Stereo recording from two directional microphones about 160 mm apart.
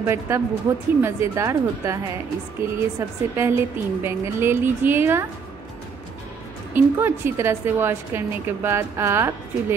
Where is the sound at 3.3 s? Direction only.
15° right (ahead or behind).